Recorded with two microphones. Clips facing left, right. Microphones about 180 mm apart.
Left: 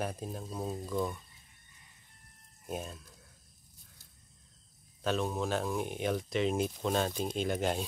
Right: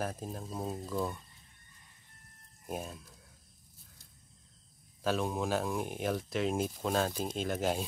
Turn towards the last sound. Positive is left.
turn(degrees=-5)  # may be behind; listen again after turning